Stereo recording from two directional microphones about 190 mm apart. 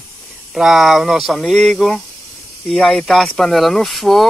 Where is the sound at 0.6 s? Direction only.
Centre (ahead or behind).